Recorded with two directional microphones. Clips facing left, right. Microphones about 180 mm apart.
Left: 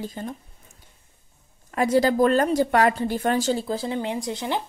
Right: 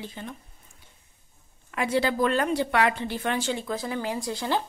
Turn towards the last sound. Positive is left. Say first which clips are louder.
# left 1 dB
turn(degrees=20)  # may be behind; listen again after turning